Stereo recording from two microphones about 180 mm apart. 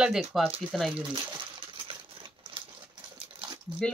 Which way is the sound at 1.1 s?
30° right (ahead or behind).